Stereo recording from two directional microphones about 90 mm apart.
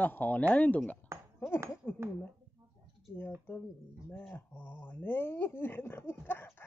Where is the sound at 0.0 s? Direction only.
20° left (ahead or behind).